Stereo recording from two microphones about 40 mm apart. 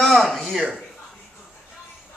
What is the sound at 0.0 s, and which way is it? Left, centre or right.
Speech, centre.